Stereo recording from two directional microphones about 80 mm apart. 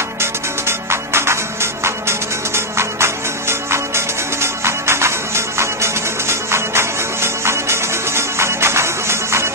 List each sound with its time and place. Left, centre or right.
0.2 s music: right